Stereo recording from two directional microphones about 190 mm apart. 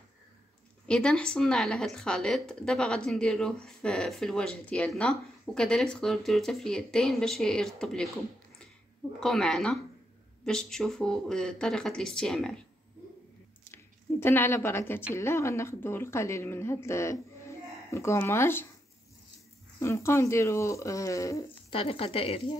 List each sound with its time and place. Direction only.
0.8 s a woman's voice: 5° left (ahead or behind)
9.2 s a woman's voice: centre (ahead or behind)
14.2 s speech: 10° left (ahead or behind)
19.8 s speech: 15° left (ahead or behind)
21.7 s speech: 30° left (ahead or behind)